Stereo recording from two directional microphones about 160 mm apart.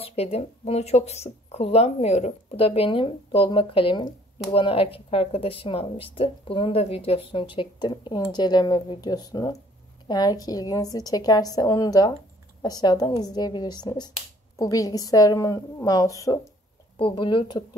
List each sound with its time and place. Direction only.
0.0 s speech: 40° left (ahead or behind); by 16.3 s 20° left (ahead or behind)
17.0 s speech: 30° left (ahead or behind)